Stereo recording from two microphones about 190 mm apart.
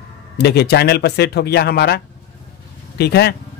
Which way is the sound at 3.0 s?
60° left (ahead or behind).